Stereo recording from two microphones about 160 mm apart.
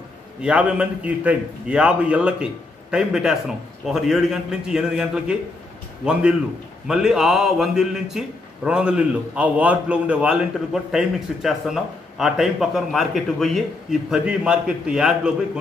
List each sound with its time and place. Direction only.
0.4 s a man's voice: 5° right (ahead or behind)
6.9 s a man's voice: 5° right (ahead or behind)